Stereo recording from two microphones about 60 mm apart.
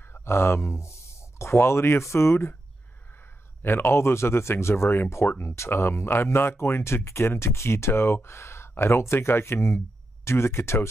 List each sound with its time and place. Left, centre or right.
0.1 s speech: left
3.6 s speech: left